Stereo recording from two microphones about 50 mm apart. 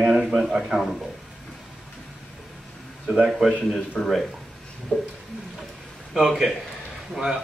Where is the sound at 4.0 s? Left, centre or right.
Centre.